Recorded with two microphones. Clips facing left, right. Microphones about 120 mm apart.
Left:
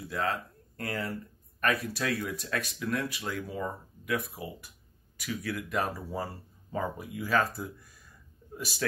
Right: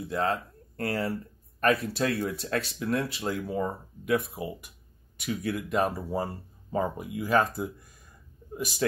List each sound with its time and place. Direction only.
0.1 s speech: 25° right (ahead or behind)